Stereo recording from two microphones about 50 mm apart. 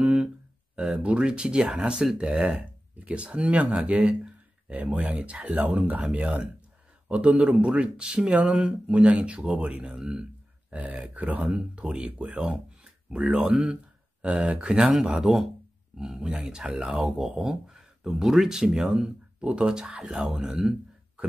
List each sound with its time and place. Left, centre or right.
0.0 s a sound: right
1.0 s speech: right
17.0 s speech: centre